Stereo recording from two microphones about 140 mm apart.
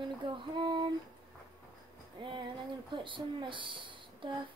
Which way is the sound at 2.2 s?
35° right (ahead or behind).